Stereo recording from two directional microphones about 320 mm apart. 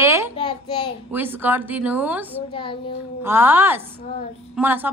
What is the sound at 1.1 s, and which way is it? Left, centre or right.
A woman's voice, centre.